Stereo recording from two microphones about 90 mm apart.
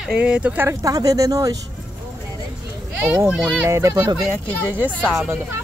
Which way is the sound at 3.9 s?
55° right (ahead or behind).